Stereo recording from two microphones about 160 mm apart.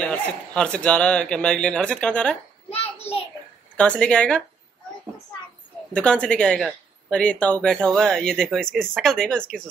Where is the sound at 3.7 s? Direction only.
5° left (ahead or behind).